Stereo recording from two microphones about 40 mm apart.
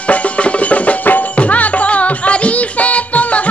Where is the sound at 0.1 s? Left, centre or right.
Left.